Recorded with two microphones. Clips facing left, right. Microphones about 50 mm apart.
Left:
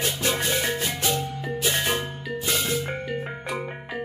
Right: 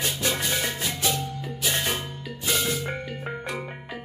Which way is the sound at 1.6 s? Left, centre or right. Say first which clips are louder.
Left 2 dB; left.